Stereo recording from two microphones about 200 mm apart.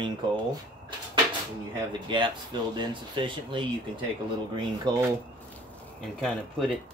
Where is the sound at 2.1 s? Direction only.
25° right (ahead or behind).